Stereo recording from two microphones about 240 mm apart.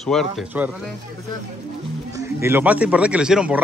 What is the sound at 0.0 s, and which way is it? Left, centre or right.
Speech, centre.